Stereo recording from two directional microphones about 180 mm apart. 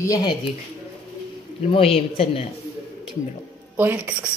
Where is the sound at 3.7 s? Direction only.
10° right (ahead or behind).